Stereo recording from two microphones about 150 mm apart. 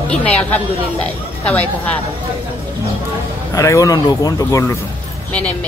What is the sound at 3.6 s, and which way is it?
Speech, 20° left (ahead or behind).